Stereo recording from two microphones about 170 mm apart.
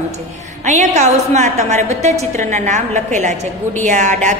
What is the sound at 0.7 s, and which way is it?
A woman's voice, 45° right (ahead or behind).